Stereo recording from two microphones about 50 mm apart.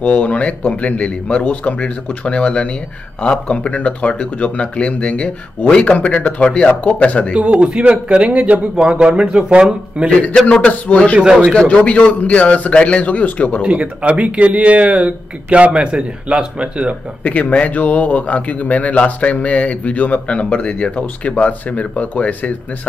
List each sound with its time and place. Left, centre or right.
0.0 s a man's voice: left
7.3 s speech: right
10.5 s a man's voice: left
11.1 s speech: centre
11.5 s a man's voice: left
13.6 s speech: right
17.2 s a man's voice: left